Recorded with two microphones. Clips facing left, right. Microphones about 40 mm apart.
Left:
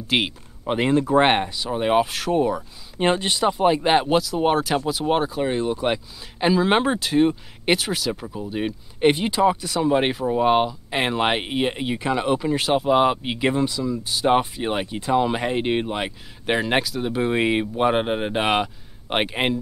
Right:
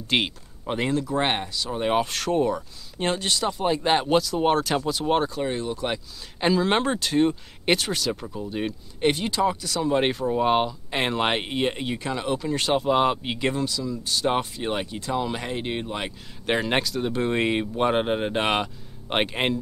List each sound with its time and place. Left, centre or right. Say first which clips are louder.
0.1 s speech: left 2 dB; centre
0.7 s speech: left 4 dB; centre
0.9 s speech: left 9 dB; left; by 2.6 s centre
3.0 s speech: left 5 dB; left
6.4 s speech: left 3 dB; centre
12.5 s speech: left 2 dB; centre; by 15.9 s left
15.9 s speech: left 4 dB; centre